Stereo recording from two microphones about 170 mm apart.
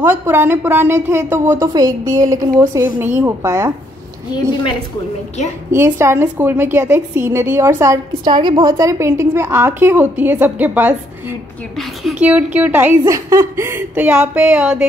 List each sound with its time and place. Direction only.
0.0 s a woman's voice: 15° right (ahead or behind)
5.7 s a woman's voice: 15° right (ahead or behind)